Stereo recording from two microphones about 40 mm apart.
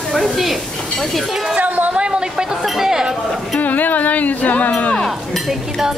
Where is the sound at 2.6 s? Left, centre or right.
Centre.